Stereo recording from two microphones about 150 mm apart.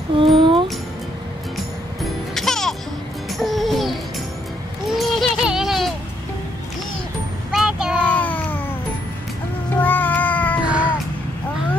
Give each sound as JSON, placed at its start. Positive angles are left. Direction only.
{"t": 0.4, "sound": "music", "side_deg": -35}
{"t": 2.3, "sound": "music", "side_deg": 5}
{"t": 4.8, "sound": "a sound", "side_deg": 0}
{"t": 7.5, "sound": "child singing", "side_deg": -5}
{"t": 8.0, "sound": "a sound", "side_deg": 10}
{"t": 9.8, "sound": "cat", "side_deg": 10}
{"t": 10.6, "sound": "music", "side_deg": -10}